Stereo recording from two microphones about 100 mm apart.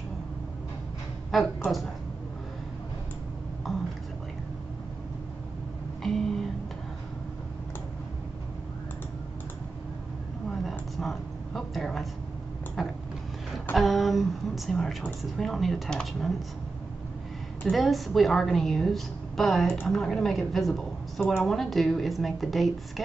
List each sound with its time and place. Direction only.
1.3 s a woman's voice: centre (ahead or behind)
6.0 s music: 5° left (ahead or behind)
10.5 s a sound: 5° left (ahead or behind)
15.3 s a woman's voice: centre (ahead or behind)
17.6 s a woman's voice: centre (ahead or behind)
21.2 s a woman's voice: 15° left (ahead or behind)
21.5 s a woman's voice: centre (ahead or behind)